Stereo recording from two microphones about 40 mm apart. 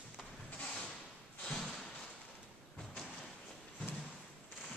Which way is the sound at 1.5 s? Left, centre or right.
Centre.